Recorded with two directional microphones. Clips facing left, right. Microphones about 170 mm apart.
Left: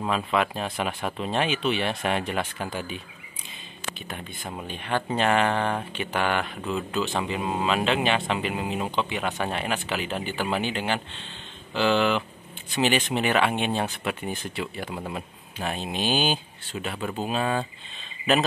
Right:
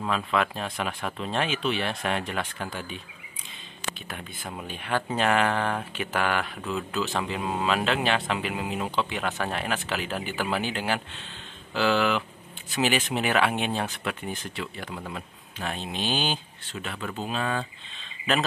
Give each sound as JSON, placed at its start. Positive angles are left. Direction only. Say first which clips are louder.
{"t": 0.0, "sound": "speech", "louder": "left 1 dB", "side_deg": 5}
{"t": 4.1, "sound": "speech", "louder": "left 2 dB", "side_deg": 0}
{"t": 14.6, "sound": "speech", "louder": "left 3 dB", "side_deg": 10}